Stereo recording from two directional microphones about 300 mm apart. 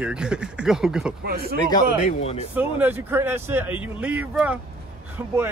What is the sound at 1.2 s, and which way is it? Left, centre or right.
Speech, right.